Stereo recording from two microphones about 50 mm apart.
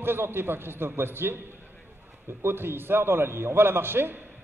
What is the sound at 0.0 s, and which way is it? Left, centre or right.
A man's voice, right.